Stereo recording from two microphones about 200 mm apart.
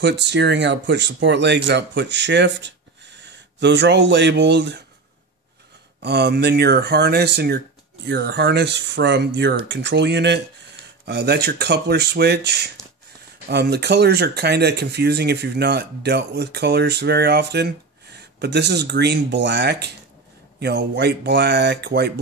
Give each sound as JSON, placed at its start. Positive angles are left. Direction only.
{"t": 0.0, "sound": "speech", "side_deg": -60}
{"t": 6.0, "sound": "speech", "side_deg": -55}